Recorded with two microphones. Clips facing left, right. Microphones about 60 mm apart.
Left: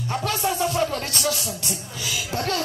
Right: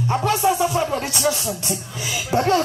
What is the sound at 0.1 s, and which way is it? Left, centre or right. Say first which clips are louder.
Speech: right 6 dB; centre.